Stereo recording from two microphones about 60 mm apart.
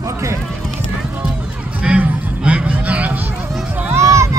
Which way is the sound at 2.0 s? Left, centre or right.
Centre.